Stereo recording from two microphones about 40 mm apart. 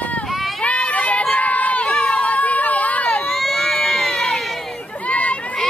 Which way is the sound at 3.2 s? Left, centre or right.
Centre.